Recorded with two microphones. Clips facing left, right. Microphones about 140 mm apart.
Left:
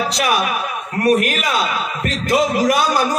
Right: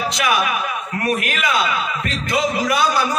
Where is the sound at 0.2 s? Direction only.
40° left (ahead or behind).